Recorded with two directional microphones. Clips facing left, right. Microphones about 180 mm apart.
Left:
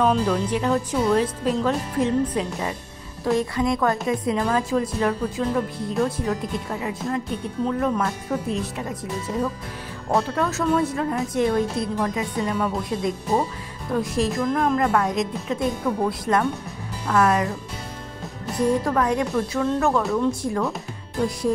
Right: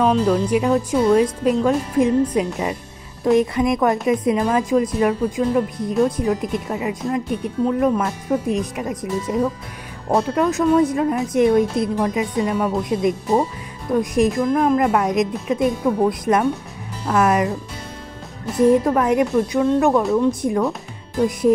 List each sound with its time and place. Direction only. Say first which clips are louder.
0.0 s a woman's voice: right 4 dB; 5° right (ahead or behind)
18.6 s speech: right 6 dB; 20° right (ahead or behind)
20.0 s speech: right 4 dB; centre (ahead or behind)